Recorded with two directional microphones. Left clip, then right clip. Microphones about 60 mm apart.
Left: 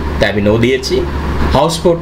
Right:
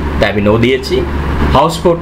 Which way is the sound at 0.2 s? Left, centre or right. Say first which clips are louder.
Right 1 dB; centre.